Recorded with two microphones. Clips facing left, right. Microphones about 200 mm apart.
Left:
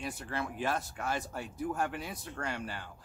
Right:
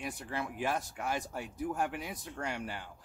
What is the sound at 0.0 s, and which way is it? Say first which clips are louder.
Speech: left 1 dB; 15° right (ahead or behind).